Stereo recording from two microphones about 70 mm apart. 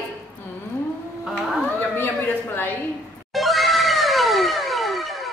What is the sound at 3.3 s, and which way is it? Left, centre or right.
Music, centre.